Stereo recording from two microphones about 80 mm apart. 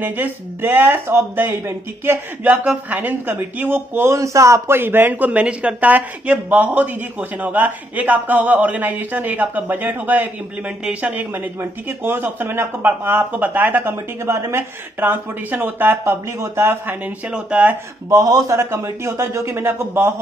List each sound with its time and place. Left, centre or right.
0.0 s speech: right
4.7 s a woman's voice: right
17.3 s a woman's voice: centre
18.1 s a man's voice: right